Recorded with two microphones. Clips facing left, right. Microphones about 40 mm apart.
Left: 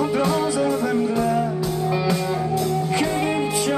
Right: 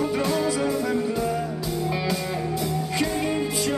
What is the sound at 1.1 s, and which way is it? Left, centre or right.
Music, left.